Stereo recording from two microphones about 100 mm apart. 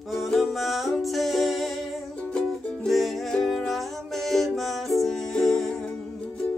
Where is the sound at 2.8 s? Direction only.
Centre (ahead or behind).